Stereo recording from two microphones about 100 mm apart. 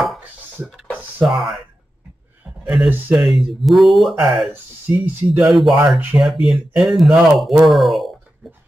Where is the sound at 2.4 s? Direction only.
5° right (ahead or behind).